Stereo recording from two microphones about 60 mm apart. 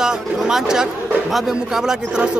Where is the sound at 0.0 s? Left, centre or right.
Centre.